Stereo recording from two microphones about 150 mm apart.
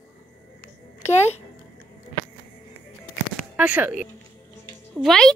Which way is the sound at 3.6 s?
10° right (ahead or behind).